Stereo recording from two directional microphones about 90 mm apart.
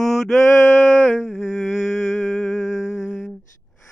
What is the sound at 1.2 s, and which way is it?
Humming, centre (ahead or behind).